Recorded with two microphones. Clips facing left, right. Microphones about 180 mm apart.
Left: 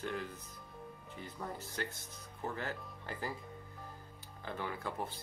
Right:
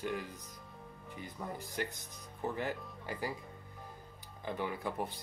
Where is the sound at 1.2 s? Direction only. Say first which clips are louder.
Right 1 dB; 15° right (ahead or behind).